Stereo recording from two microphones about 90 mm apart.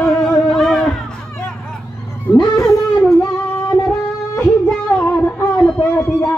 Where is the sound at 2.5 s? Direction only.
Centre (ahead or behind).